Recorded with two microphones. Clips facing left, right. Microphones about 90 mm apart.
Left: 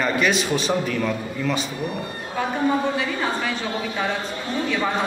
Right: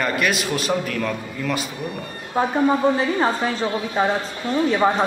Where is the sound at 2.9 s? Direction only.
35° right (ahead or behind).